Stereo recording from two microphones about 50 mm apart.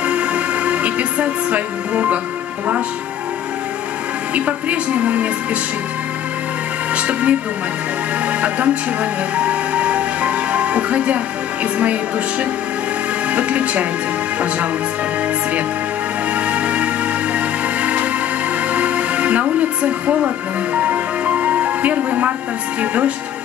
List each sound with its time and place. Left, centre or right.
0.0 s music: right
4.3 s a woman's voice: right
6.9 s a woman's voice: right
16.3 s music: right
19.6 s a woman's voice: right